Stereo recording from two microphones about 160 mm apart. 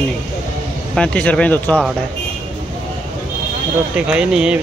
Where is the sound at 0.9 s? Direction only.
5° left (ahead or behind).